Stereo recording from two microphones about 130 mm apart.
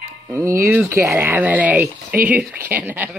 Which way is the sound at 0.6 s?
15° right (ahead or behind).